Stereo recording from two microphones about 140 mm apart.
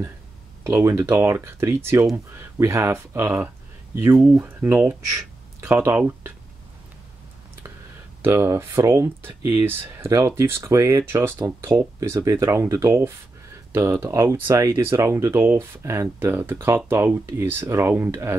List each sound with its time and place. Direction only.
0.7 s speech: 20° right (ahead or behind)
8.2 s speech: 15° right (ahead or behind)